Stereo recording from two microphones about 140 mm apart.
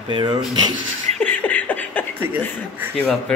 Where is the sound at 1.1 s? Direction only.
10° left (ahead or behind).